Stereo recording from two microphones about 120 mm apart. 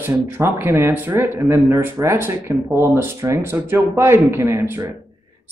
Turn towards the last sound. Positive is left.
turn(degrees=-25)  # may be behind; listen again after turning